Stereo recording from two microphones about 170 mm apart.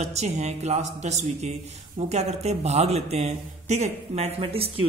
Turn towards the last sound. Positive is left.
turn(degrees=-35)  # may be behind; listen again after turning